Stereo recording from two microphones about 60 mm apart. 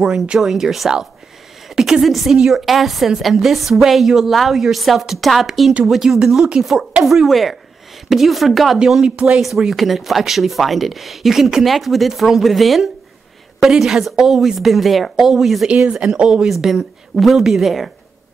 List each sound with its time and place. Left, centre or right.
0.0 s speech: centre
8.7 s speech: centre
9.4 s speech: centre
15.7 s speech: centre